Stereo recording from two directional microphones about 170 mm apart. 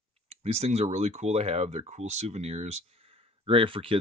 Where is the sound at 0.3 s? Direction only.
40° right (ahead or behind).